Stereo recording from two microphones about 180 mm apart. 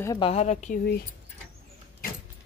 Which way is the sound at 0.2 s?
35° left (ahead or behind).